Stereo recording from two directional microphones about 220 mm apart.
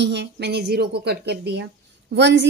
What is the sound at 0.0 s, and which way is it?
Female singing, 50° right (ahead or behind).